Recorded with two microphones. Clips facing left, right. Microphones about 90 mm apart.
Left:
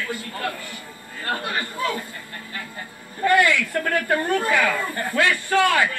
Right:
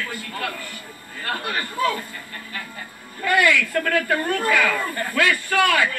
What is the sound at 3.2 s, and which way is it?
Speech, 30° left (ahead or behind).